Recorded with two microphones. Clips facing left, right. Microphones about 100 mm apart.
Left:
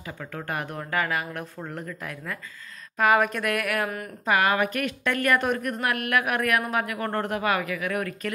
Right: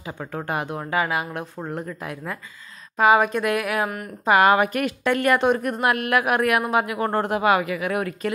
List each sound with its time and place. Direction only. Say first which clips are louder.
0.2 s speech: right 5 dB; 30° right (ahead or behind); by 3.9 s 15° right (ahead or behind)
4.3 s a woman's voice: right 6 dB; 35° right (ahead or behind)